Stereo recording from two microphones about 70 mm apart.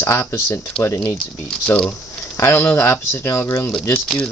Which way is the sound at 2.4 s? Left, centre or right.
Left.